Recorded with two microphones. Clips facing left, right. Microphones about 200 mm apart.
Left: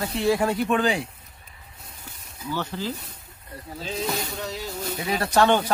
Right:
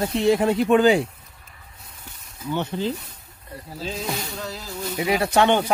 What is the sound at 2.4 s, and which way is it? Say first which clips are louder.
Speech: right 4 dB; 25° right (ahead or behind).